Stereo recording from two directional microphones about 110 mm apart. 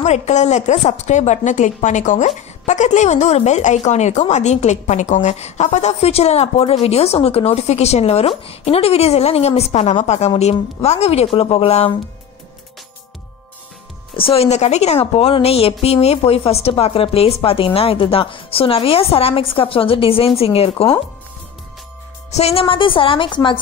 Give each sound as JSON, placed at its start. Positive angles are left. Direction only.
{"t": 0.0, "sound": "a woman's voice", "side_deg": 90}
{"t": 14.1, "sound": "a woman's voice", "side_deg": 60}
{"t": 22.3, "sound": "a woman's voice", "side_deg": 65}